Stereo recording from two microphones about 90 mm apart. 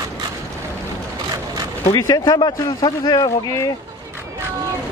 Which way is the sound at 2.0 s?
40° left (ahead or behind).